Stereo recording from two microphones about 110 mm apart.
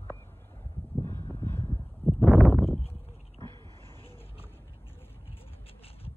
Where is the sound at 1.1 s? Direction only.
20° left (ahead or behind).